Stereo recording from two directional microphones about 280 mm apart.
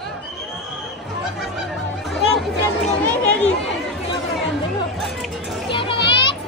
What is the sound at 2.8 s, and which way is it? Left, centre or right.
Speech, centre.